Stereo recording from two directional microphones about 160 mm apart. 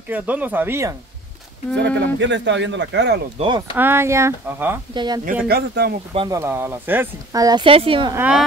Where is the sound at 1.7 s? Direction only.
90° right.